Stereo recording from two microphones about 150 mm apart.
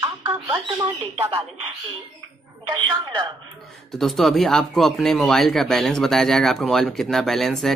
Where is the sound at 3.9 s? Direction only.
Centre (ahead or behind).